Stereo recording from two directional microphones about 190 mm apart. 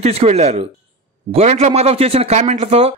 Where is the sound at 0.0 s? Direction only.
35° right (ahead or behind).